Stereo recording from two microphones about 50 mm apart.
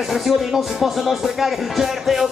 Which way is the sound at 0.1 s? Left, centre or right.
Centre.